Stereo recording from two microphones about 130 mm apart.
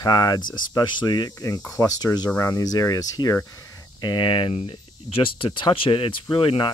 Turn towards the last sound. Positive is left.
turn(degrees=40)  # may be behind; listen again after turning